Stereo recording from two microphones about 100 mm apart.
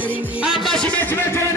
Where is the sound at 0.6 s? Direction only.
5° left (ahead or behind).